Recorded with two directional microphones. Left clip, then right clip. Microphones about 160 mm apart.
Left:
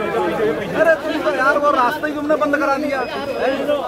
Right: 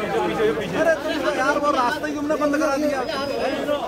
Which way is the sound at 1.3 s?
30° left (ahead or behind).